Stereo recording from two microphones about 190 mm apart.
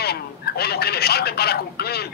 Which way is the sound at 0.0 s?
55° left (ahead or behind).